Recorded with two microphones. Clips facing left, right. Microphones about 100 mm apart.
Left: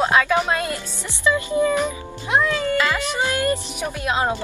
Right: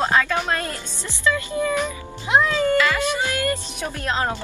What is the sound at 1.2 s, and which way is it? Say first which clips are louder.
Music: left 3 dB; 20° left (ahead or behind).